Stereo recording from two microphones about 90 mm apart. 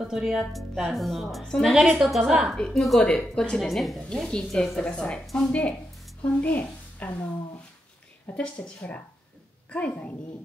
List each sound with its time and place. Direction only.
0.0 s a woman's voice: 5° right (ahead or behind); by 7.2 s 20° left (ahead or behind)
8.4 s a woman's voice: 10° left (ahead or behind)